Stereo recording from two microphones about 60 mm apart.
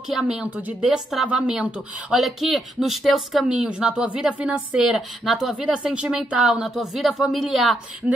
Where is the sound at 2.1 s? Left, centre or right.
Centre.